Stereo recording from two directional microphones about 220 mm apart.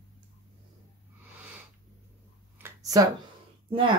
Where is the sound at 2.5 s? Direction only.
15° right (ahead or behind).